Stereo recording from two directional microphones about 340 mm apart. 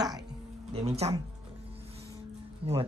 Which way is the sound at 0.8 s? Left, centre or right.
Centre.